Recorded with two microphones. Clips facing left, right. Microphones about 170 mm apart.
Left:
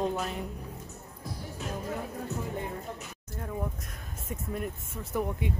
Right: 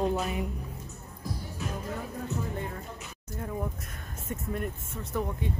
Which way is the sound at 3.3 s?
Centre (ahead or behind).